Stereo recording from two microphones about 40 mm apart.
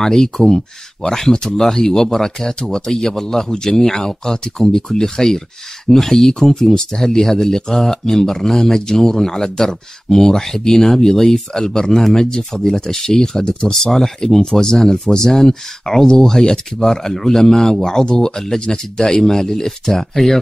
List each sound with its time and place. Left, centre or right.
0.0 s speech: centre